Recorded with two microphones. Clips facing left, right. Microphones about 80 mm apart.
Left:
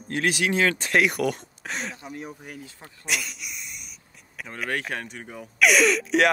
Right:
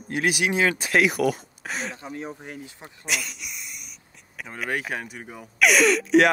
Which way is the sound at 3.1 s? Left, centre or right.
Centre.